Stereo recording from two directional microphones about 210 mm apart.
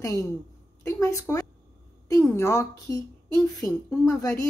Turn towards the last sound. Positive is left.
turn(degrees=15)  # may be behind; listen again after turning